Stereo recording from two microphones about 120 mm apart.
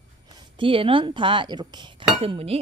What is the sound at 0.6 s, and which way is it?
Speech, 45° right (ahead or behind).